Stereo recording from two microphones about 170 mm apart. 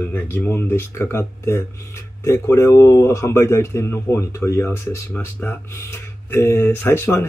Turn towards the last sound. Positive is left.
turn(degrees=15)  # may be behind; listen again after turning